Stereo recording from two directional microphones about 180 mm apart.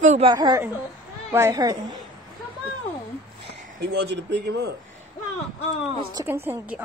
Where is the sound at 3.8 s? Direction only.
70° right (ahead or behind).